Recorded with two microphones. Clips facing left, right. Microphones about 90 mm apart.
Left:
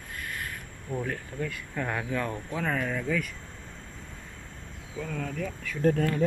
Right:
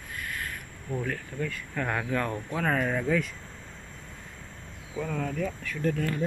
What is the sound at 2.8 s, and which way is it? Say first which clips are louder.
Speech: right 3 dB; 15° right (ahead or behind).